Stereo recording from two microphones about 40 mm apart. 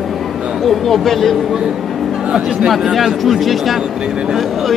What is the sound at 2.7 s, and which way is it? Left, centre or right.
Speech, centre.